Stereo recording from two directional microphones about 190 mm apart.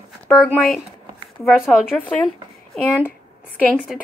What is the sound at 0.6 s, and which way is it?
Speech, 5° left (ahead or behind).